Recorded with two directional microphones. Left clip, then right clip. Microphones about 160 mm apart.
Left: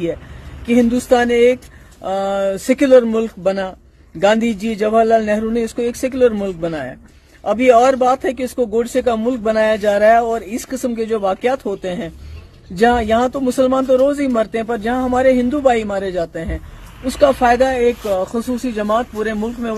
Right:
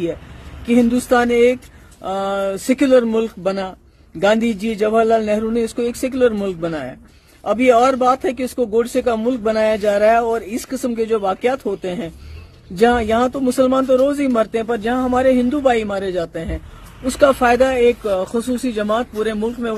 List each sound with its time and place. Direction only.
0.7 s speech: centre (ahead or behind)
18.1 s speech: 35° right (ahead or behind)